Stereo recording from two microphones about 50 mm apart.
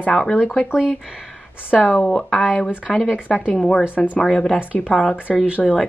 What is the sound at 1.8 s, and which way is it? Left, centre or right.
Speech, left.